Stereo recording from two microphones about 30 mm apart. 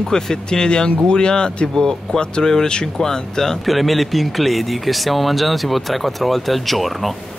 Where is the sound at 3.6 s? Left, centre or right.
Centre.